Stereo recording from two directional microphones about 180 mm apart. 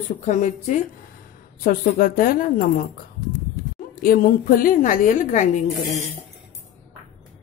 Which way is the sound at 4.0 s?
50° left (ahead or behind).